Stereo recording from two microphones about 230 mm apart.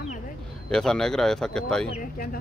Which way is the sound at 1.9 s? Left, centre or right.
Left.